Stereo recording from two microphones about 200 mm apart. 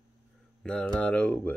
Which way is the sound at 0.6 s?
5° left (ahead or behind).